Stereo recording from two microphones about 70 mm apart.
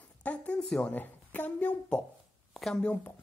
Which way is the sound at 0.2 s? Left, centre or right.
Centre.